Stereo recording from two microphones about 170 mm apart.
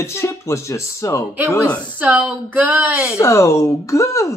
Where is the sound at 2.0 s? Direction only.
10° right (ahead or behind).